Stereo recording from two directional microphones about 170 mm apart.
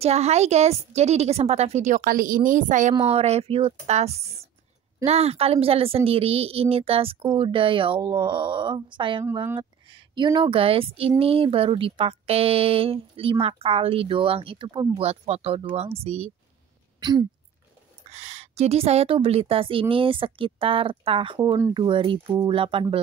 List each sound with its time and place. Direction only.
0.0 s speech: 40° right (ahead or behind)
2.0 s a woman's voice: 55° right (ahead or behind)
3.1 s speech: 35° right (ahead or behind)
17.0 s speech: 25° right (ahead or behind)
18.1 s speech: 40° right (ahead or behind)